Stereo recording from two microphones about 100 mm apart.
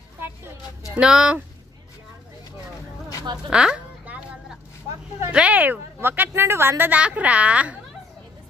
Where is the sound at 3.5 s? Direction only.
10° right (ahead or behind).